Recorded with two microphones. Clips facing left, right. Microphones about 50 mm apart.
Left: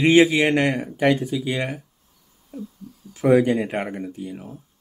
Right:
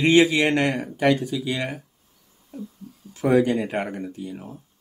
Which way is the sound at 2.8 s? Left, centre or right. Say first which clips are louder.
Left 1 dB; right.